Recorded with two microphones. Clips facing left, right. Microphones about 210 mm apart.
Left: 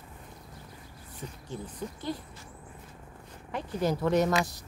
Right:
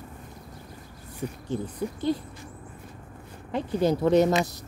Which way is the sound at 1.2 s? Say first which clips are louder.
Right 9 dB; 50° right (ahead or behind).